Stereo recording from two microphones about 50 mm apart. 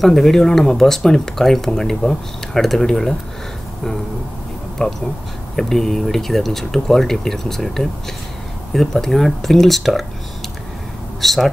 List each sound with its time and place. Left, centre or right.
0.0 s speech: centre
4.8 s speech: centre
11.1 s speech: centre